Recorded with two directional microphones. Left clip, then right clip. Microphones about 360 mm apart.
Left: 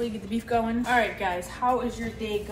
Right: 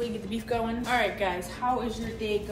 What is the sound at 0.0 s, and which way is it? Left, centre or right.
A woman's voice, centre.